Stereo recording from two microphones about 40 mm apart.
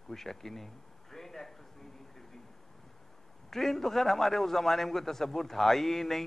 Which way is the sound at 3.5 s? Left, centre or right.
Centre.